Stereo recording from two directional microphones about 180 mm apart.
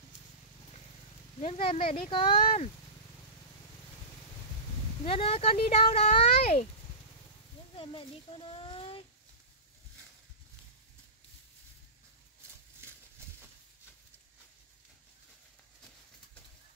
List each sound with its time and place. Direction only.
1.4 s speech: 30° left (ahead or behind)
5.0 s speech: 35° left (ahead or behind)
7.7 s a child's voice: 30° left (ahead or behind)